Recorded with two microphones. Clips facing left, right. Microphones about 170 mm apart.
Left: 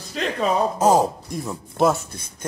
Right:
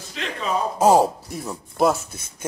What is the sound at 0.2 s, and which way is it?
Speech, 40° left (ahead or behind).